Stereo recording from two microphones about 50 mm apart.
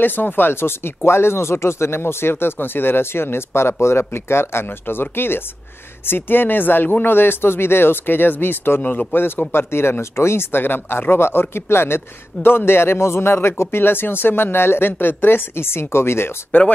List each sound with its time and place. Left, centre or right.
0.0 s speech: left
9.5 s speech: left